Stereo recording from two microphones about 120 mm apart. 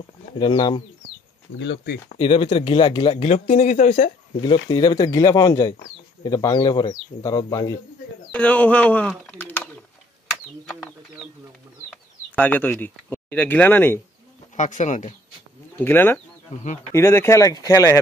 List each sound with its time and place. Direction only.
0.4 s speech: 40° left (ahead or behind)
2.1 s speech: 50° left (ahead or behind)
3.3 s speech: 90° left; by 4.1 s 75° left (ahead or behind)
4.4 s speech: 40° left (ahead or behind)
8.3 s speech: 10° left (ahead or behind)
11.9 s speech: 15° left (ahead or behind)
14.6 s speech: 90° left
15.8 s speech: 20° left (ahead or behind)